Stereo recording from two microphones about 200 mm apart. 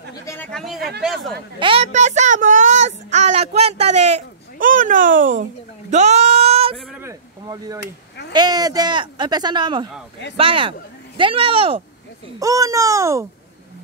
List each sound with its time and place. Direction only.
0.1 s chatter: 15° left (ahead or behind)
0.5 s speech: centre (ahead or behind)
1.6 s speech: 30° right (ahead or behind)
5.3 s a sound: 40° right (ahead or behind)
6.9 s a sound: 15° right (ahead or behind)
8.3 s speech: 20° right (ahead or behind)
12.4 s a child's voice: 15° right (ahead or behind)